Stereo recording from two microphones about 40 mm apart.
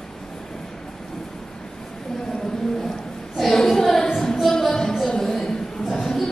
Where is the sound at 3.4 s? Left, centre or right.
Centre.